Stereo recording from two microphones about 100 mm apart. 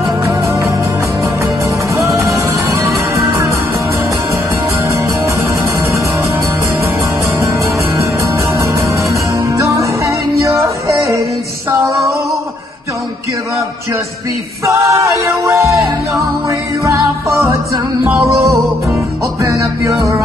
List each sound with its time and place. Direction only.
0.2 s music: 30° right (ahead or behind)
2.0 s music: 30° right (ahead or behind)
9.6 s music: 35° right (ahead or behind)
14.7 s a sound: 30° right (ahead or behind)
15.2 s music: 30° right (ahead or behind)